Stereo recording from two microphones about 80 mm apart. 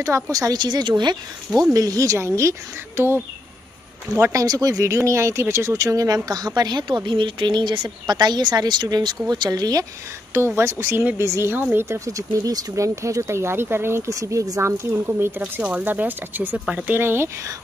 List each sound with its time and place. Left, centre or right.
0.0 s speech: right
1.6 s speech: right
2.1 s speech: right
4.2 s speech: right
7.1 s a woman's voice: right
10.3 s speech: right
11.5 s speech: right
12.1 s speech: right; by 17.0 s centre
17.0 s speech: right